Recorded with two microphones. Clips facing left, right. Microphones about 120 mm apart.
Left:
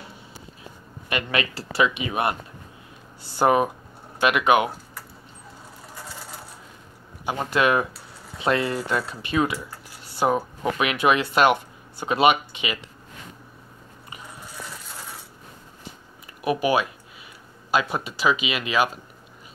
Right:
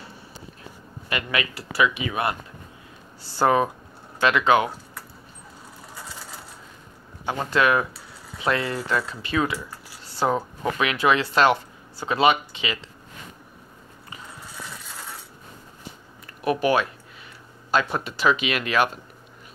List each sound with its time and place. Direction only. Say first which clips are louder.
1.0 s speech: left 1 dB; 25° left (ahead or behind)
7.2 s speech: even; 15° left (ahead or behind)
16.4 s speech: even; 10° left (ahead or behind)